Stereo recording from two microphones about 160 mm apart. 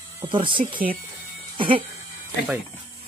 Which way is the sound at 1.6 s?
30° right (ahead or behind).